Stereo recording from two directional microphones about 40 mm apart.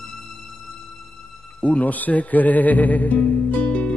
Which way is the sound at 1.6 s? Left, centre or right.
Left.